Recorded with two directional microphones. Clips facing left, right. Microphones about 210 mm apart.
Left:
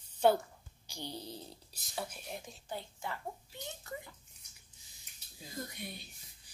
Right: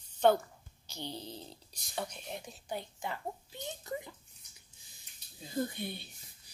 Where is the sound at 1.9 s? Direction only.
5° left (ahead or behind).